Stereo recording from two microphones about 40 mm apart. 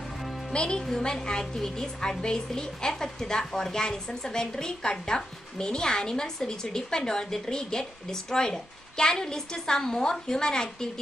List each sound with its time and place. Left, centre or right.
0.5 s speech: left
0.8 s a woman's voice: centre